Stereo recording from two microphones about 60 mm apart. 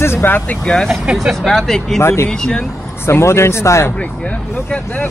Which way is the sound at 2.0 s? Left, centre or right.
Left.